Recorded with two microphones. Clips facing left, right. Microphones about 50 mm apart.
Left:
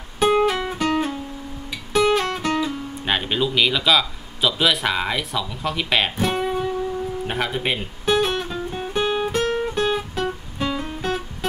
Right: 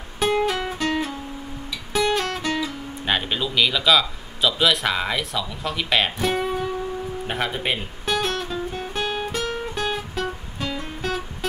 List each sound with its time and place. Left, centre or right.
0.2 s music: centre
0.8 s guitar: centre
2.0 s music: centre
2.4 s music: left
3.1 s a man's voice: centre
8.2 s music: centre
8.9 s guitar: centre
9.3 s guitar: left
9.8 s music: centre
10.6 s guitar: centre